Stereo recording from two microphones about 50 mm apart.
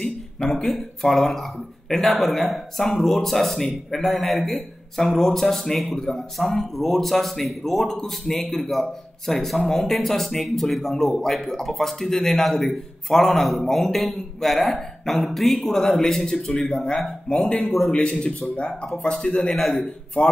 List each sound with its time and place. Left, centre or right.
0.0 s a man's voice: centre
19.5 s a man's voice: centre
20.2 s speech: left